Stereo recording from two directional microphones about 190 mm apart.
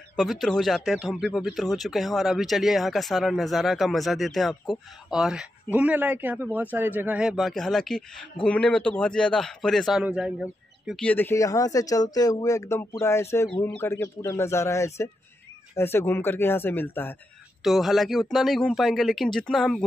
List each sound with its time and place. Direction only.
0.1 s a man's voice: centre (ahead or behind)
17.6 s a man's voice: centre (ahead or behind)